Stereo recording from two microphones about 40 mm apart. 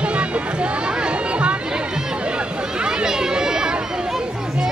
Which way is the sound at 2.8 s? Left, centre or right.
Centre.